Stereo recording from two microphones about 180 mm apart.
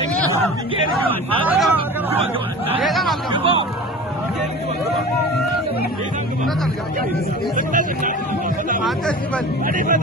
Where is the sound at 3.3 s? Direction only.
30° right (ahead or behind).